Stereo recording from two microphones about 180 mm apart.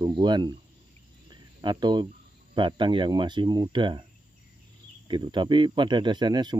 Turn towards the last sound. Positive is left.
turn(degrees=-25)  # may be behind; listen again after turning